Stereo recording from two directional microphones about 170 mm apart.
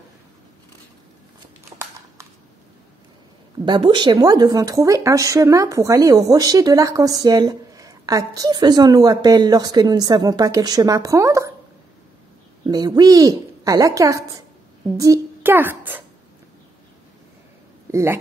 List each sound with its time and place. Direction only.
3.6 s speech: 25° right (ahead or behind)
12.6 s a child's voice: 25° right (ahead or behind)
17.9 s speech: 15° right (ahead or behind)